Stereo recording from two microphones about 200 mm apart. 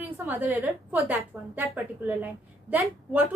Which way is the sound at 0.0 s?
10° right (ahead or behind).